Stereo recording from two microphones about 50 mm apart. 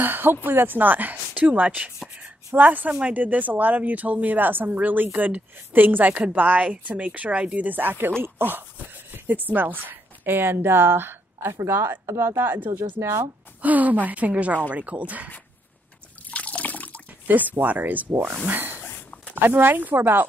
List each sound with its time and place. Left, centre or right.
0.0 s a woman's voice: right
13.6 s speech: right
16.3 s water: left
17.3 s speech: right
18.8 s a sound: left
19.4 s speech: right